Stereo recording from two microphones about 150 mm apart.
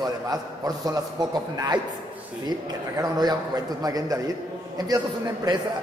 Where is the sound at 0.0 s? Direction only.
25° right (ahead or behind).